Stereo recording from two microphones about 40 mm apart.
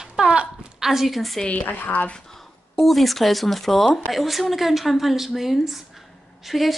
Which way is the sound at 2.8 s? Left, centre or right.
Centre.